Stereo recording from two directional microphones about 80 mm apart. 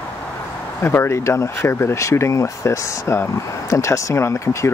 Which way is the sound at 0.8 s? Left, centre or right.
Left.